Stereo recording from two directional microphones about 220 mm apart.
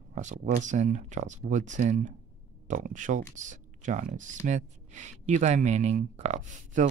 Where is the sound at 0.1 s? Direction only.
35° right (ahead or behind).